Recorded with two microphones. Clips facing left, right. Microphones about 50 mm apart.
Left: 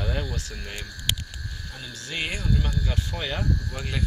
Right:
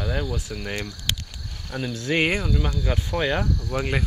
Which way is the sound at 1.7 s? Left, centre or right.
Right.